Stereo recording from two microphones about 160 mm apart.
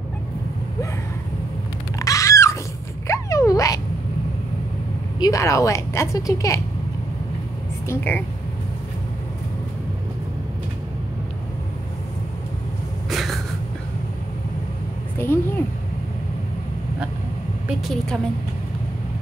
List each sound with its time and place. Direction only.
2.0 s a sound: 20° left (ahead or behind)
5.2 s a woman's voice: 20° left (ahead or behind)
7.9 s a woman's voice: 15° left (ahead or behind)
13.1 s a sound: centre (ahead or behind)
15.1 s a woman's voice: 15° left (ahead or behind)
17.6 s a woman's voice: centre (ahead or behind)